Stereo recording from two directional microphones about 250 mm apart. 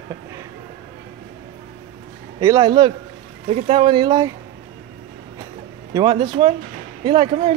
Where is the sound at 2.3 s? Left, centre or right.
Centre.